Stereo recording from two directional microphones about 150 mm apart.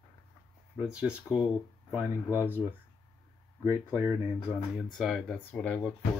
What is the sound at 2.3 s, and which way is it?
Speech, 20° left (ahead or behind).